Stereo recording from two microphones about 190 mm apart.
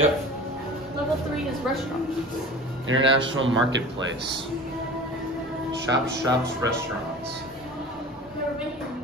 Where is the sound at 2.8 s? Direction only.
80° right.